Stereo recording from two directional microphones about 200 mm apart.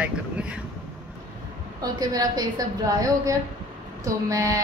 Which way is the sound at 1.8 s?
20° right (ahead or behind).